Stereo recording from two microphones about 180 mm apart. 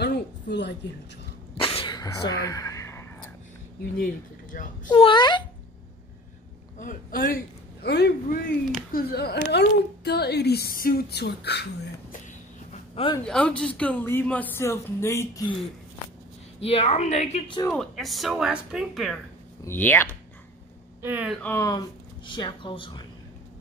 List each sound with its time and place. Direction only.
0.0 s a sound: 70° left (ahead or behind)
1.5 s sneeze: 30° left (ahead or behind)
4.8 s speech: 25° left (ahead or behind)
6.8 s a man's voice: 50° left (ahead or behind); by 11.9 s 65° left (ahead or behind)
12.7 s a sound: 35° left (ahead or behind)
13.3 s a woman's voice: 5° left (ahead or behind)
16.6 s a woman's voice: 35° left (ahead or behind)
17.6 s speech: centre (ahead or behind)
19.6 s a woman's voice: 10° left (ahead or behind)
21.0 s speech: 10° right (ahead or behind)
21.4 s a woman's voice: 10° left (ahead or behind)
21.6 s speech: 25° left (ahead or behind)